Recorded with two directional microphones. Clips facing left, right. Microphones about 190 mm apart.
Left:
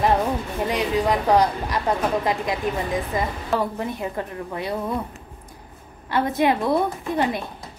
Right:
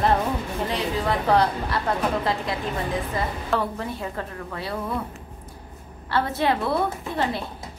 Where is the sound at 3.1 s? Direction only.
15° left (ahead or behind).